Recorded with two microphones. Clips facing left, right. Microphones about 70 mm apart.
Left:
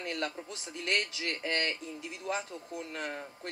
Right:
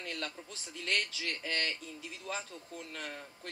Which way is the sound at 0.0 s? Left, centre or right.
Left.